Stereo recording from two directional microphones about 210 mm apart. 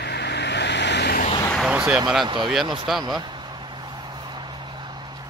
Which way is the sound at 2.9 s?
Centre (ahead or behind).